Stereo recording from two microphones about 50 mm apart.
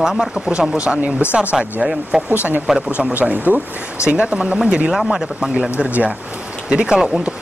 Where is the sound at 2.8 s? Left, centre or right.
Centre.